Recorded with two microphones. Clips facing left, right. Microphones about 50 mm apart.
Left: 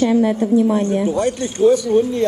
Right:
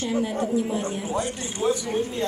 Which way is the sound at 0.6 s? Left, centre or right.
Left.